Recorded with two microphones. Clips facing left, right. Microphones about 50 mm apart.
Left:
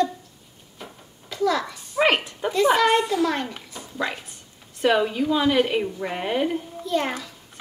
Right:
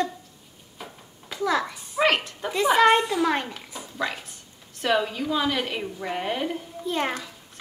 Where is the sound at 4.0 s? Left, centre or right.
Centre.